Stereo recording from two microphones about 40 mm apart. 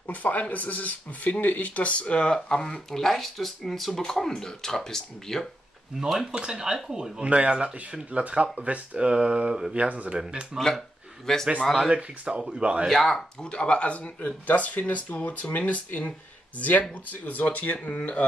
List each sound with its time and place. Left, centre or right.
0.0 s speech: left
2.3 s speech: centre
6.2 s speech: right
7.2 s speech: right
8.9 s speech: right
9.8 s speech: right
10.1 s speech: centre
11.3 s speech: centre
11.9 s speech: right
12.9 s speech: centre
13.4 s speech: left
17.9 s a man's voice: left